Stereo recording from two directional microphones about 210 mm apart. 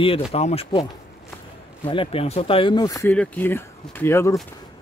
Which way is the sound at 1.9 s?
25° left (ahead or behind).